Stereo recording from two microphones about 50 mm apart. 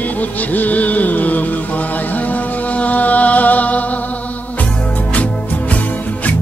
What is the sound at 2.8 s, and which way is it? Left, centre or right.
Music, left.